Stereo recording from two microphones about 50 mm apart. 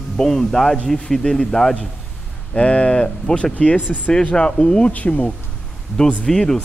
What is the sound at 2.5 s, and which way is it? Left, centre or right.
Speech, left.